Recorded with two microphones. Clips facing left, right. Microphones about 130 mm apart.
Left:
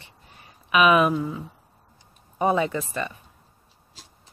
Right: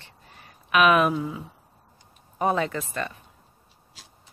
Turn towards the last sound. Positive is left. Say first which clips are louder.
# left 2 dB
turn(degrees=5)  # may be behind; listen again after turning